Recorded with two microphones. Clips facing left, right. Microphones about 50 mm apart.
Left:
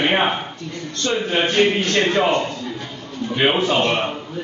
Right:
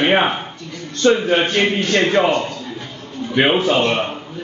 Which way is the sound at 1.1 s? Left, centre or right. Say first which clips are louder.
Right 4 dB; right.